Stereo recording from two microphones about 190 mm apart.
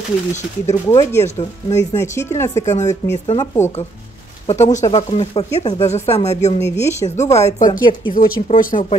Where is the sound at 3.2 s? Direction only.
30° left (ahead or behind).